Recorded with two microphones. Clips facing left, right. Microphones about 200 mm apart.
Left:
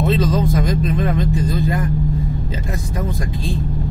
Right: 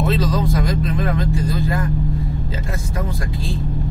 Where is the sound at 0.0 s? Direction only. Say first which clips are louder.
Left 2 dB; 25° left (ahead or behind).